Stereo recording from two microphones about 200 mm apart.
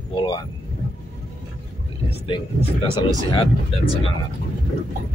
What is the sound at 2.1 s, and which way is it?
Speech, 25° left (ahead or behind).